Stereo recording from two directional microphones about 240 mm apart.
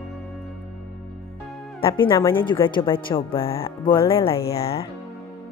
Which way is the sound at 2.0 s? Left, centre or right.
Centre.